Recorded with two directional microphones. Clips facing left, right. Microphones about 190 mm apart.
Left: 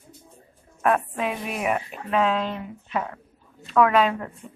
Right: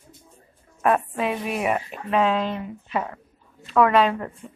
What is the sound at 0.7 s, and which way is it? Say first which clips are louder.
A woman's voice: right 1 dB; 5° right (ahead or behind).